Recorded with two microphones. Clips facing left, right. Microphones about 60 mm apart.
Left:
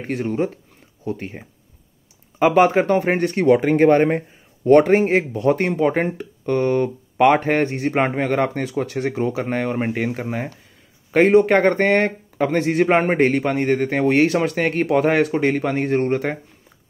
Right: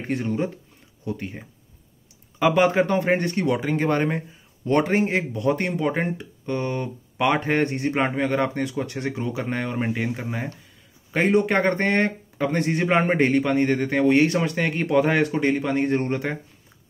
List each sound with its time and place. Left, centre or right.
1.0 s speech: left
6.0 s speech: left
6.5 s speech: left
7.9 s a man's voice: left
15.7 s speech: left